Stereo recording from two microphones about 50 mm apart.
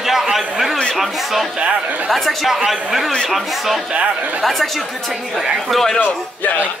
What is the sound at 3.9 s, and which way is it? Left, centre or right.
Speech, right.